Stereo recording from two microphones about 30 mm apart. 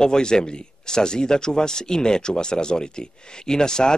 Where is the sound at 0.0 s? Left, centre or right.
Left.